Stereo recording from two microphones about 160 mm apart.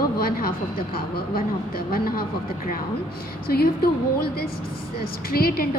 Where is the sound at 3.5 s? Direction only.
70° left (ahead or behind).